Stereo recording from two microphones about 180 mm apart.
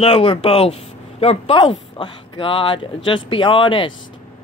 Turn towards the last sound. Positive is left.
turn(degrees=30)  # may be behind; listen again after turning